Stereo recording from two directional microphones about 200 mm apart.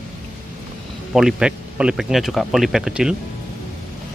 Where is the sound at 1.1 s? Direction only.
5° right (ahead or behind).